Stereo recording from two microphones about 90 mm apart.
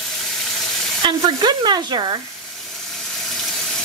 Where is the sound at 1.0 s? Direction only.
60° right (ahead or behind).